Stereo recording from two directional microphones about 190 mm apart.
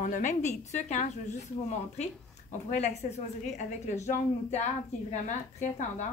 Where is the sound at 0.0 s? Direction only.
40° left (ahead or behind).